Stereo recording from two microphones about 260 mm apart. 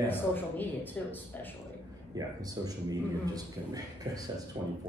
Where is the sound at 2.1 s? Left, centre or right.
Centre.